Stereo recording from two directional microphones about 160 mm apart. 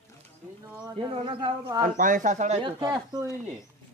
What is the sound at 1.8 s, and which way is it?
Speech, 55° right (ahead or behind).